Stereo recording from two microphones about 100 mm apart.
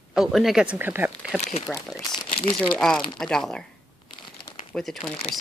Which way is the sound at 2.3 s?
70° left (ahead or behind).